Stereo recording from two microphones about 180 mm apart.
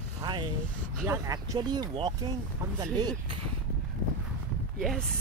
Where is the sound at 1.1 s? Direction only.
20° right (ahead or behind).